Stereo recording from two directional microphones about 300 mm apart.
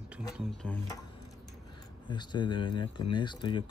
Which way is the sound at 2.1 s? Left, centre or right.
Centre.